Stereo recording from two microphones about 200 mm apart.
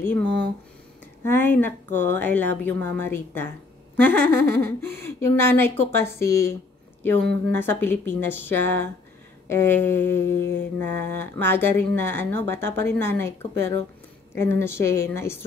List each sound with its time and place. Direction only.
1.2 s speech: 10° left (ahead or behind)